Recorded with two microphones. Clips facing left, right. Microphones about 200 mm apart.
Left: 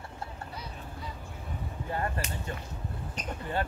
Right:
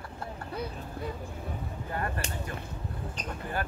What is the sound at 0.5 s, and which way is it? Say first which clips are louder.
Vehicle: right 6 dB; 55° right (ahead or behind).